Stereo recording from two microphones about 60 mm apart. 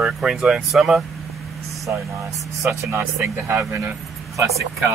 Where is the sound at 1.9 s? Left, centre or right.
Right.